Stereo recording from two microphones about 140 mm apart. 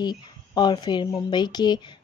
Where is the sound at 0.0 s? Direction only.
30° left (ahead or behind).